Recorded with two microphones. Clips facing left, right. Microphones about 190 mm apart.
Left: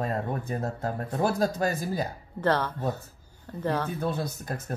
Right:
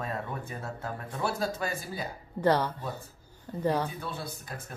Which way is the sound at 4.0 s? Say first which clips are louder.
Left 8 dB; 45° left (ahead or behind).